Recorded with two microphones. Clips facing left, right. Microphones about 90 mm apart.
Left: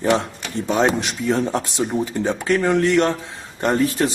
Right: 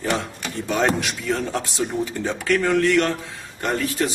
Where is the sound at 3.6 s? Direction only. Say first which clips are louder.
Left 4 dB; 35° left (ahead or behind).